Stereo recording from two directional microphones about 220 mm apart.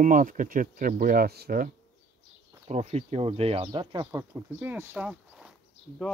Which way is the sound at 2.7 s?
30° right (ahead or behind).